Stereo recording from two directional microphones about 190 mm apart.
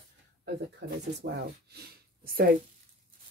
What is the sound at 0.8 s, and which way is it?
Speech, 60° right (ahead or behind).